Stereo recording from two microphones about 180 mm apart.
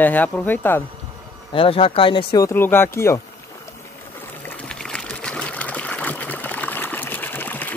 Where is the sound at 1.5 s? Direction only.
30° left (ahead or behind).